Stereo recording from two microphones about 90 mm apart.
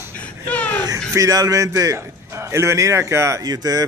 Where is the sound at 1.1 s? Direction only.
40° right (ahead or behind).